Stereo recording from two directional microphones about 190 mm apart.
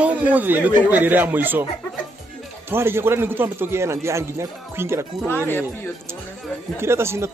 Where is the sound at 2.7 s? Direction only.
10° right (ahead or behind).